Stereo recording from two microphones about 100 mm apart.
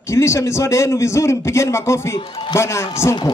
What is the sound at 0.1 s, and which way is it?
A man's voice, 30° left (ahead or behind).